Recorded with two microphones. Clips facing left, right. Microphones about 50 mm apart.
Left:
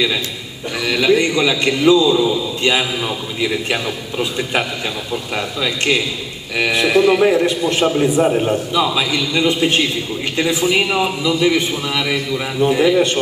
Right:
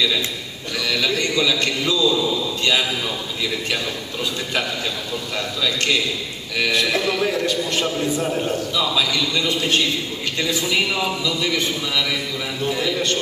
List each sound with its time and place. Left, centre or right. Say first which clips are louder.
0.8 s a man's voice: left 7 dB; left